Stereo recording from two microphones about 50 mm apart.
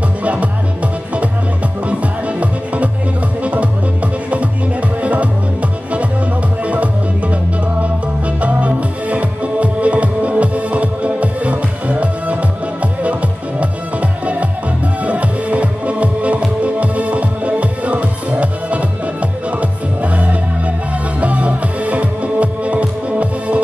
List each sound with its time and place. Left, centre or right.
0.2 s music: right
1.9 s music: right
5.0 s music: right
6.6 s music: right
8.4 s music: right
15.0 s music: right